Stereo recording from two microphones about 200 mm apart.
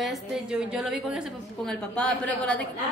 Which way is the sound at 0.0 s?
Centre (ahead or behind).